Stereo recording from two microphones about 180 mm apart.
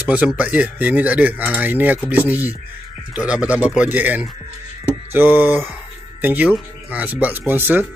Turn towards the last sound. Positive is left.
turn(degrees=-10)  # may be behind; listen again after turning